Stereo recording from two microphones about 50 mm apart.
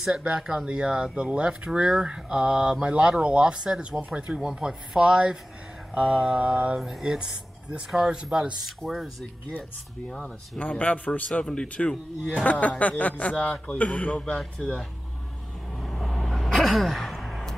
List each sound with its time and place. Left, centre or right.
0.0 s mantra: centre
1.5 s speech: centre
5.9 s mantra: right
6.8 s speech: centre
8.8 s speech: centre
10.6 s a man's voice: left
15.8 s vehicle: centre